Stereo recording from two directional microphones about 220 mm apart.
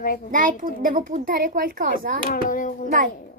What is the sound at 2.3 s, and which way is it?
Speech, 35° left (ahead or behind).